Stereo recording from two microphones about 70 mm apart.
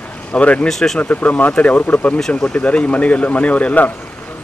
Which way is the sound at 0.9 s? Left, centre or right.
Left.